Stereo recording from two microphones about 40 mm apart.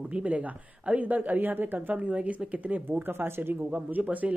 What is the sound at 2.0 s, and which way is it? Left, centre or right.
Speech, right.